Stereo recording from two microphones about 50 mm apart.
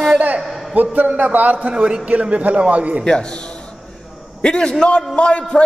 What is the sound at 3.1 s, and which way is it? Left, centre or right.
A man's voice, centre.